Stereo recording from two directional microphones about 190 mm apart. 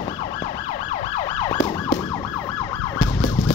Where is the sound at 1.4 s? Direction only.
20° left (ahead or behind).